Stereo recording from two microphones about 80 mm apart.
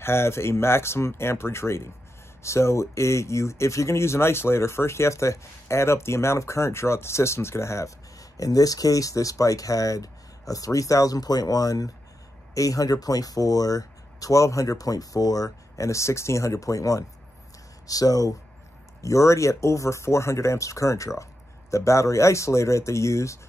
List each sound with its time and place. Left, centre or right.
0.0 s speech: left